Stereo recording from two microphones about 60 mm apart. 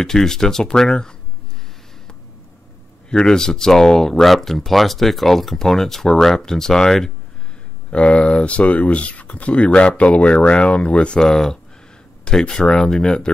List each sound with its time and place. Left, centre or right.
0.0 s speech: centre
3.1 s speech: centre
7.9 s speech: left